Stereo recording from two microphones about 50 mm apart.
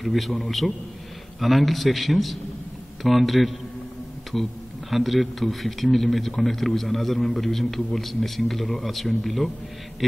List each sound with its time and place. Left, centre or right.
0.0 s a man's voice: centre